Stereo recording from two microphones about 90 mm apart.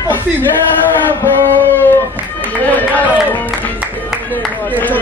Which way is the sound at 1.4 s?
20° left (ahead or behind).